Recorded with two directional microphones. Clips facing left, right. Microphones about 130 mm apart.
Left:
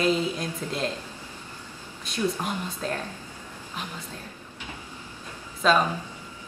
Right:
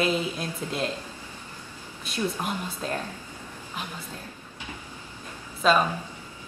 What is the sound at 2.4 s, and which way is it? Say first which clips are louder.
Speech: left 1 dB; 10° right (ahead or behind).